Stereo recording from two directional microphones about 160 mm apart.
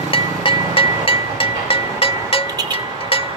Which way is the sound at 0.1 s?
35° left (ahead or behind).